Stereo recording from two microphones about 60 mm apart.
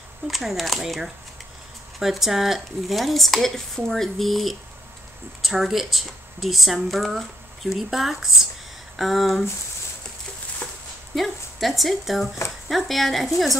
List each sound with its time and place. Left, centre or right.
0.3 s speech: centre
10.6 s a sound: centre
11.1 s speech: centre